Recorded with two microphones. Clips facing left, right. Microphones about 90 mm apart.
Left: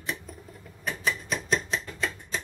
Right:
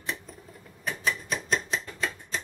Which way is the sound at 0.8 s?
Centre (ahead or behind).